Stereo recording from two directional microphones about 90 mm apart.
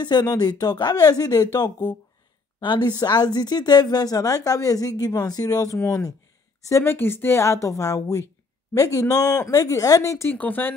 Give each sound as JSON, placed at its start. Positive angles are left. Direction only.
{"t": 0.0, "sound": "speech", "side_deg": 50}
{"t": 2.6, "sound": "a woman's voice", "side_deg": 55}
{"t": 5.8, "sound": "speech", "side_deg": 30}
{"t": 10.3, "sound": "speech", "side_deg": 20}